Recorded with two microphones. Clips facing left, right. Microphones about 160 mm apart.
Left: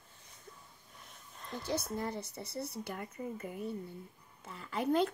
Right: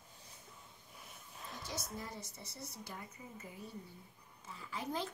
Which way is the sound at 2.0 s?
65° left (ahead or behind).